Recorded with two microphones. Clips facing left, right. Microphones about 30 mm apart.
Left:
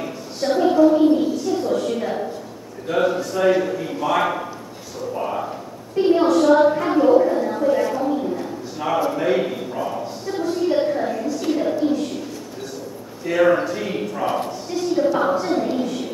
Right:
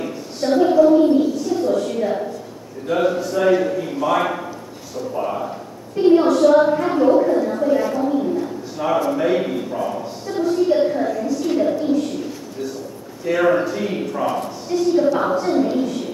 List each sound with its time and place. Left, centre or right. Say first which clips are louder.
0.0 s a sound: right 2 dB; centre
2.9 s a woman's voice: right 1 dB; centre
11.2 s a sound: right 3 dB; centre
13.2 s a woman's voice: even; centre
14.2 s speech: even; centre
14.7 s a woman's voice: right 3 dB; centre